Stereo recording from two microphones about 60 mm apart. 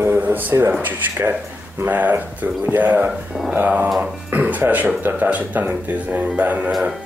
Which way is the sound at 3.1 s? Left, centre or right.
Centre.